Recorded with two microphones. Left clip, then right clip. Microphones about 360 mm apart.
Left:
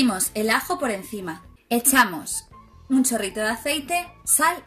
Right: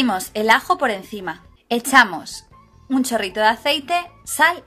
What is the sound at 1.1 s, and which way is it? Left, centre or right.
Speech, right.